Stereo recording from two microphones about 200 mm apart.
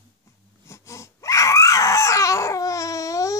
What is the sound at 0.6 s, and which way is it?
Crying, 15° left (ahead or behind).